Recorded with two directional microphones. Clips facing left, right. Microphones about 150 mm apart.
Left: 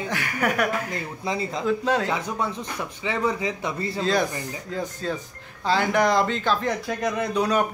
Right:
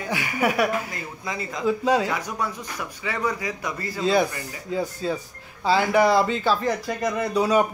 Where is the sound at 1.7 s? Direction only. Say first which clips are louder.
Right 2 dB; 10° right (ahead or behind).